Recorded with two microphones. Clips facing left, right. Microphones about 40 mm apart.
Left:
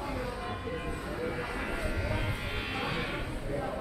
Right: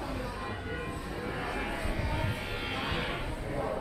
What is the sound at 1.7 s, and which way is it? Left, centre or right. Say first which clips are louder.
Cattle: even; centre.